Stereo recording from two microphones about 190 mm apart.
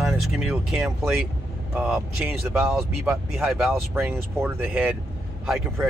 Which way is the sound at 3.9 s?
10° right (ahead or behind).